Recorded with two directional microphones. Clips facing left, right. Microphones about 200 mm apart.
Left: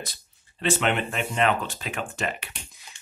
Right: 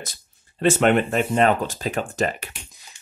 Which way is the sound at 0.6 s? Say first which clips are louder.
Right 7 dB; 45° right (ahead or behind).